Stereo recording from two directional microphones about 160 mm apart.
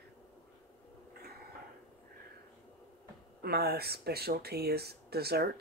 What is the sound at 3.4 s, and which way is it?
Speech, 80° right.